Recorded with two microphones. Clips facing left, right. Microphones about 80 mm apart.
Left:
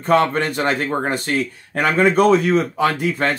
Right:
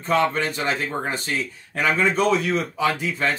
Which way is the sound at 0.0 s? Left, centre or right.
Left.